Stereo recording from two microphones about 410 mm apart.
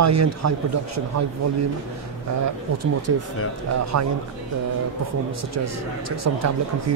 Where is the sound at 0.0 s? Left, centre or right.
Right.